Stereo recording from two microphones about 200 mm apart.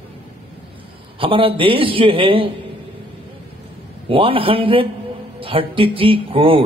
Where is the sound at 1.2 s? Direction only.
25° right (ahead or behind).